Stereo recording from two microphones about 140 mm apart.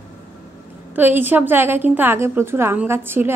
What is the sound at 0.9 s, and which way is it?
A woman's voice, 15° right (ahead or behind).